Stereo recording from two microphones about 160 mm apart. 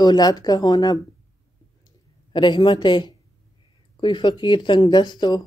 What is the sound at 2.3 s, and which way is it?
Speech, 30° left (ahead or behind).